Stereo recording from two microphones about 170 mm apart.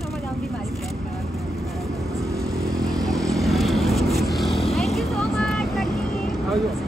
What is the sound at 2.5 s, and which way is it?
Vehicle, 20° right (ahead or behind).